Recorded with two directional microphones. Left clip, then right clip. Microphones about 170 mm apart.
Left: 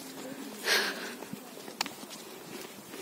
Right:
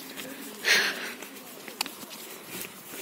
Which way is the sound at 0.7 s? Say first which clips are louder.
Right 5 dB; 10° left (ahead or behind).